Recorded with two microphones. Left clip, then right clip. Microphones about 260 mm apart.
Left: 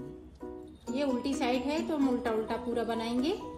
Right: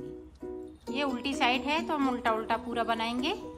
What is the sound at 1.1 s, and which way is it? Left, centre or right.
A woman's voice, centre.